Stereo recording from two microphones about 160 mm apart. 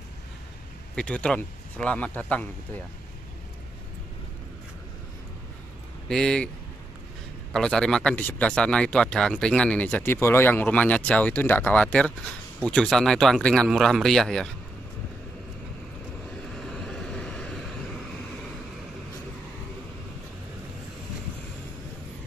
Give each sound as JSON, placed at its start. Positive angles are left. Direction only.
{"t": 0.9, "sound": "speech", "side_deg": 5}
{"t": 6.0, "sound": "speech", "side_deg": 5}
{"t": 7.5, "sound": "speech", "side_deg": 5}
{"t": 16.5, "sound": "vehicle", "side_deg": 5}